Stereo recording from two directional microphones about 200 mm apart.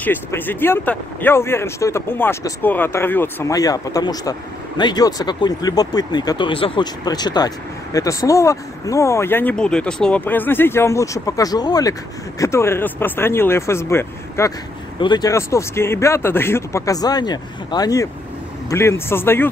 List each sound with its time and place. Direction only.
0.0 s speech: 10° left (ahead or behind)